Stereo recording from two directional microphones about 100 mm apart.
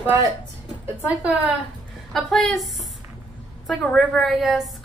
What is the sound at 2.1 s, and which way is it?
Speech, 5° left (ahead or behind).